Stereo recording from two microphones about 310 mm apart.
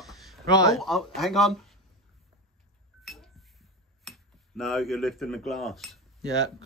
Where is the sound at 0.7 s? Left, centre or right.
Centre.